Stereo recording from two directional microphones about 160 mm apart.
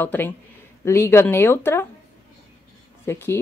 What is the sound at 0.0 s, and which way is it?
Speech, 10° left (ahead or behind).